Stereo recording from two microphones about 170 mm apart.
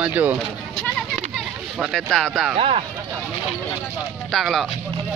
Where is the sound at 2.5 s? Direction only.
35° right (ahead or behind).